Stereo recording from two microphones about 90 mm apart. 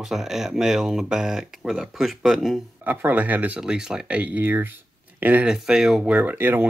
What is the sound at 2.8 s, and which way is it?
Speech, 20° right (ahead or behind).